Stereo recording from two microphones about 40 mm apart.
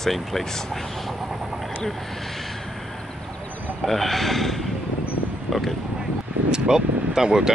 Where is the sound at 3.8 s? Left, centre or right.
Centre.